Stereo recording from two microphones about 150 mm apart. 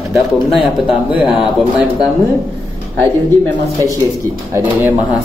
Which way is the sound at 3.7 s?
20° right (ahead or behind).